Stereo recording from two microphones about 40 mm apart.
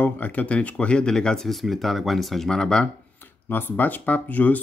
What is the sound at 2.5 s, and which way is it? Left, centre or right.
Speech, centre.